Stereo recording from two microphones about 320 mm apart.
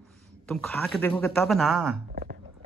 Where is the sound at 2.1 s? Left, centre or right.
Right.